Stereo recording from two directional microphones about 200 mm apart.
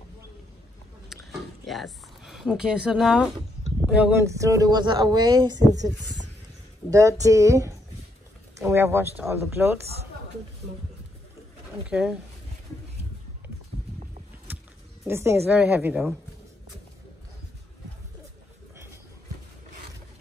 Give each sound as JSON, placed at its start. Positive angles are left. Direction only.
{"t": 1.7, "sound": "speech", "side_deg": 0}
{"t": 6.9, "sound": "speech", "side_deg": -15}
{"t": 11.9, "sound": "speech", "side_deg": -5}
{"t": 14.5, "sound": "a sound", "side_deg": -10}
{"t": 15.0, "sound": "speech", "side_deg": -15}